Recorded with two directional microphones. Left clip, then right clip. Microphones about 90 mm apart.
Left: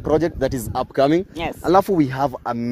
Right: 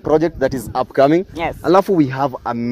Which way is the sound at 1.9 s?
50° left (ahead or behind).